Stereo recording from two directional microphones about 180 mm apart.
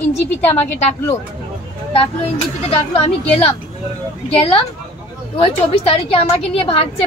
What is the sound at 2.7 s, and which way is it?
Speech, 35° left (ahead or behind).